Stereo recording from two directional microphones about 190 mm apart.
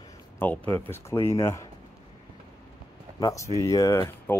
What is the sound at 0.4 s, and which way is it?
Speech, 10° left (ahead or behind).